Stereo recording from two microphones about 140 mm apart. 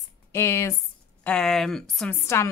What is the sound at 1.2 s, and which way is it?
Speech, 5° left (ahead or behind).